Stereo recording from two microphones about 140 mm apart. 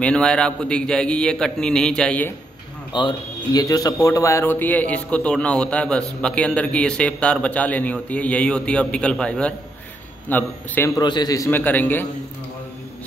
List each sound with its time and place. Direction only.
0.0 s a man's voice: 5° left (ahead or behind)
2.9 s speech: 30° left (ahead or behind); by 10.9 s 10° left (ahead or behind)
11.0 s a man's voice: 30° left (ahead or behind); by 12.1 s 15° left (ahead or behind)